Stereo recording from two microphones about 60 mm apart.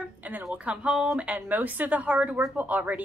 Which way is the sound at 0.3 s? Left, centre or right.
Centre.